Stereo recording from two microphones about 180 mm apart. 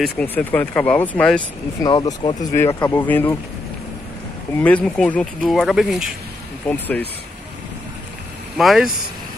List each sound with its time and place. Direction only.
0.0 s speech: 5° left (ahead or behind)
1.8 s speech: 20° left (ahead or behind)
4.6 s speech: 5° left (ahead or behind)
6.7 s speech: 10° left (ahead or behind)
8.5 s speech: centre (ahead or behind)